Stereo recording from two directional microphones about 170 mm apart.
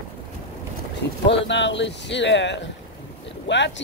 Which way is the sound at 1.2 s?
90° left.